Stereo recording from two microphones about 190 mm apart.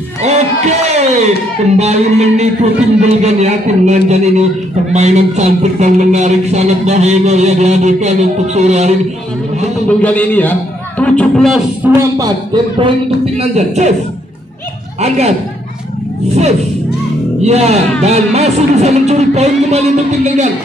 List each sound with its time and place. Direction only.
0.2 s a sound: 35° right (ahead or behind)
1.8 s speech: 35° right (ahead or behind)
9.8 s a man's voice: 10° left (ahead or behind)
11.9 s speech: 15° right (ahead or behind)
13.4 s speech: 35° right (ahead or behind)
15.0 s speech: 35° right (ahead or behind)
16.3 s speech: 35° right (ahead or behind)